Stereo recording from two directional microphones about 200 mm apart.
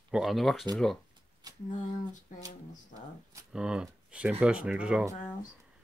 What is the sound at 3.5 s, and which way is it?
Speech, 5° right (ahead or behind).